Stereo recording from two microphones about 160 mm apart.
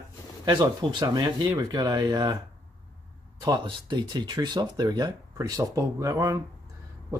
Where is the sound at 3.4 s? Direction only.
25° right (ahead or behind).